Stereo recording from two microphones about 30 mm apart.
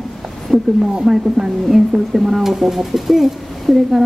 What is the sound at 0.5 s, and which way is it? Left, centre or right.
Speech, centre.